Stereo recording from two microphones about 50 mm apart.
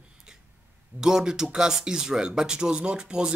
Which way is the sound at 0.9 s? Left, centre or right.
Centre.